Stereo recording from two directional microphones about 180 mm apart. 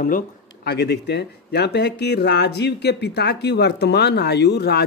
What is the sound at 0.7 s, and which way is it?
A man's voice, 65° left (ahead or behind).